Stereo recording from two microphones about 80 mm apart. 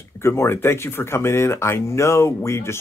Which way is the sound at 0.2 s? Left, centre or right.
Left.